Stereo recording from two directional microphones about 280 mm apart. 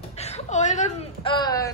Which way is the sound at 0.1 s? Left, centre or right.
Left.